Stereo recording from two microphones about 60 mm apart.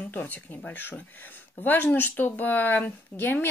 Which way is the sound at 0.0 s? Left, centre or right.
Left.